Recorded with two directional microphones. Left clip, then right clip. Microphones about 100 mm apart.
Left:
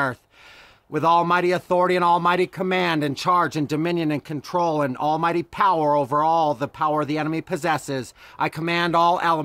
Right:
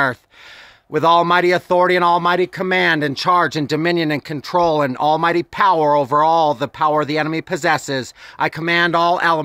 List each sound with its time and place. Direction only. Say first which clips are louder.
0.9 s a man's voice: right 5 dB; 30° right (ahead or behind)